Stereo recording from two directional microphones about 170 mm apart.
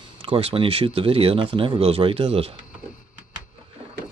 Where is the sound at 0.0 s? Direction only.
35° right (ahead or behind).